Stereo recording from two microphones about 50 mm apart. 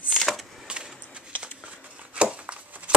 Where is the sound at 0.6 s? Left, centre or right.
Centre.